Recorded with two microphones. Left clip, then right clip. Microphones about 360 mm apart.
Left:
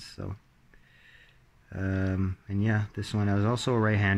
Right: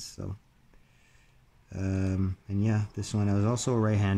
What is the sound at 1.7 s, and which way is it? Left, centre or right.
Speech, centre.